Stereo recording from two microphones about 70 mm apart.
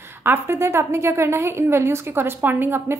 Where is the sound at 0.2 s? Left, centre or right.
Right.